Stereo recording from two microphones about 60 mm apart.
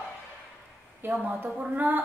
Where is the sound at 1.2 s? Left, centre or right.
Right.